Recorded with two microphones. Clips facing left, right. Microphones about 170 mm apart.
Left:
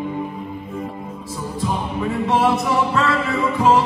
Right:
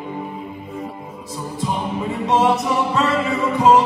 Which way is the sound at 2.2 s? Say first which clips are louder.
Right 1 dB; 20° right (ahead or behind).